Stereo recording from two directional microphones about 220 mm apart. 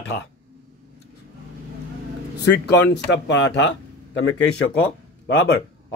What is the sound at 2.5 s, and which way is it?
Speech, 50° left (ahead or behind).